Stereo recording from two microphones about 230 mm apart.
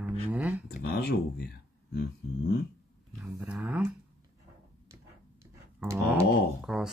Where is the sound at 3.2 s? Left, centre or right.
Centre.